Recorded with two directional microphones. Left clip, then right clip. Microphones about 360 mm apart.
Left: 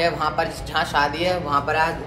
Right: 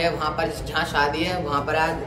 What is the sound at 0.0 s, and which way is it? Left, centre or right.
Speech, centre.